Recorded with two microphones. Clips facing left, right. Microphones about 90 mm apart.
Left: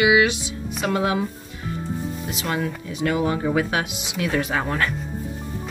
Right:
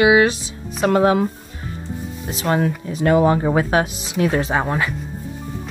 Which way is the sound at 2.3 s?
40° right (ahead or behind).